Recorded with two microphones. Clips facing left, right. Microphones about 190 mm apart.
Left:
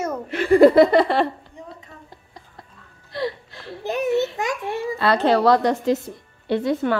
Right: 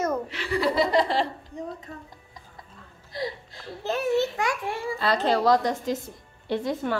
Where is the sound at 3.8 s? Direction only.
15° left (ahead or behind).